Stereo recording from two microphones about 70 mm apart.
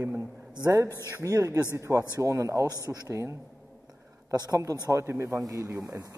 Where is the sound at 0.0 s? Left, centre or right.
Right.